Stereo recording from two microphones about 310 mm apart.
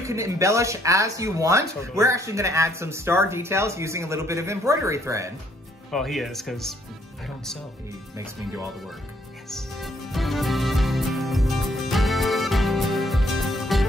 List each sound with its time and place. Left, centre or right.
0.0 s speech: centre
9.5 s music: centre